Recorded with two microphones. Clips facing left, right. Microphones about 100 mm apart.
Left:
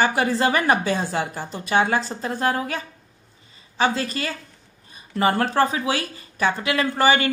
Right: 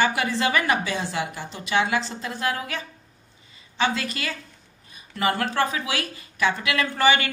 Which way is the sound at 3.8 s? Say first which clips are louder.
Left 3 dB; 35° left (ahead or behind).